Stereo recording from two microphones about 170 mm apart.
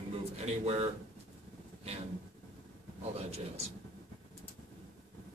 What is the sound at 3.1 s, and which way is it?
Speech, 40° right (ahead or behind).